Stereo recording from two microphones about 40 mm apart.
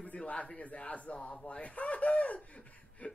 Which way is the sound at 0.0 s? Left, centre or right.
Left.